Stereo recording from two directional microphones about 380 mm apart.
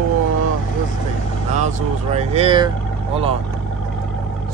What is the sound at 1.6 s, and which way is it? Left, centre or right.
Speech, centre.